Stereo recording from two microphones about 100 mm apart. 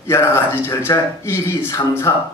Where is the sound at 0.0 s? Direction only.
25° left (ahead or behind).